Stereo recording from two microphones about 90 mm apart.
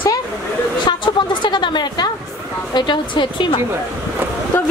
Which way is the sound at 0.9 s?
55° left (ahead or behind).